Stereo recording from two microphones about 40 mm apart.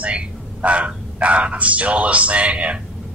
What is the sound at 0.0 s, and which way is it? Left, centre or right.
Speech, right.